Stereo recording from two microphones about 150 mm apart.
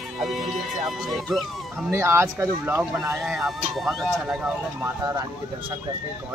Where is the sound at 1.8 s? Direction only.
15° right (ahead or behind).